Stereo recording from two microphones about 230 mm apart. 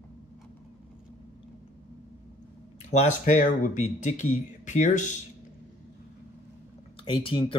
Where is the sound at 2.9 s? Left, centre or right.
Left.